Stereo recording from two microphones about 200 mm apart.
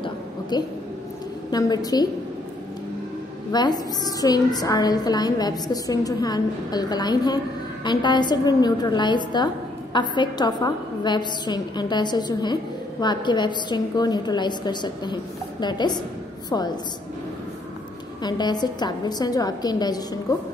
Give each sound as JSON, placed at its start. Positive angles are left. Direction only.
{"t": 0.0, "sound": "a sound", "side_deg": 20}
{"t": 1.5, "sound": "a woman's voice", "side_deg": 20}
{"t": 3.5, "sound": "a woman's voice", "side_deg": 20}
{"t": 18.2, "sound": "a woman's voice", "side_deg": 20}